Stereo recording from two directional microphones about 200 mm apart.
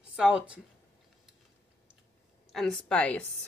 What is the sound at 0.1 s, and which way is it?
Speech, 5° right (ahead or behind).